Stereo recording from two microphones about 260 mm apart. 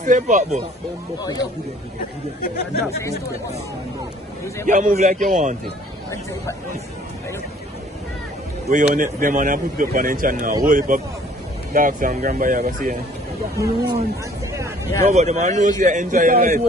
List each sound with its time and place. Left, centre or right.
0.0 s speech: right
4.6 s speech: right
8.6 s a man's voice: right
13.6 s speech: centre
15.0 s a man's voice: right